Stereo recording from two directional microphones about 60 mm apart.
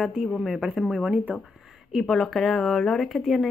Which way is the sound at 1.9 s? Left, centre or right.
Centre.